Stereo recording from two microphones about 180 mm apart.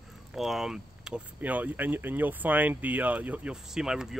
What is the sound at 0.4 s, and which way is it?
Speech, centre (ahead or behind).